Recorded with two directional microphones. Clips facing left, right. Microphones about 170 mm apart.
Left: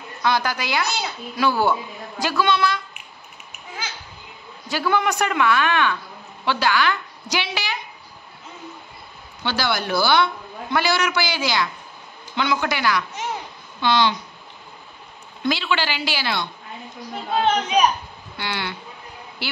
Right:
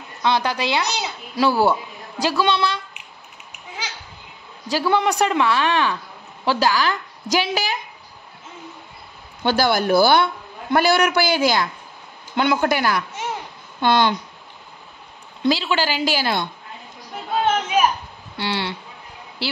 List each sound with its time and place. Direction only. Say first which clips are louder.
0.2 s speech: right 2 dB; 25° right (ahead or behind)
1.3 s a woman's voice: right 3 dB; 35° right (ahead or behind)
4.6 s a woman's voice: right 2 dB; 30° right (ahead or behind)
9.4 s a woman's voice: right 6 dB; 45° right (ahead or behind)
15.4 s a woman's voice: right 3 dB; 35° right (ahead or behind)
18.4 s a woman's voice: right 4 dB; 30° right (ahead or behind)